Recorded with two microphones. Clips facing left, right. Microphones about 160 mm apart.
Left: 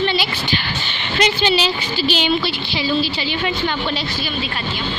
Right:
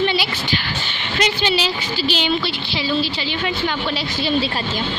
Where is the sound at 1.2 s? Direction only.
25° left (ahead or behind).